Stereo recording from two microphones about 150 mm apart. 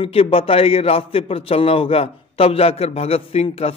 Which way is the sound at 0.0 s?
40° left (ahead or behind).